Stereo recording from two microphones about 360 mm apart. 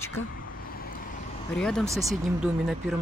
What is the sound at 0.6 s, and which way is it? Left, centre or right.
Vehicle, left.